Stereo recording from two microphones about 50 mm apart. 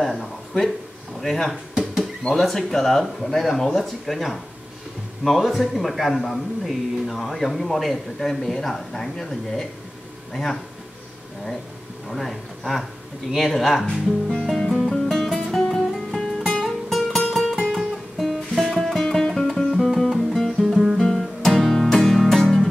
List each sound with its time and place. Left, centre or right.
0.0 s a man's voice: centre
12.1 s a man's voice: centre
14.6 s music: centre